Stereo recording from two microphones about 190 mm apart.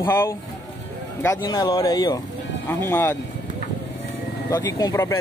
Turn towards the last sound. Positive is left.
turn(degrees=15)  # may be behind; listen again after turning